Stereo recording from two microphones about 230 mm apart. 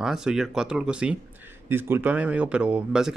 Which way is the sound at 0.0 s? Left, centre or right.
Centre.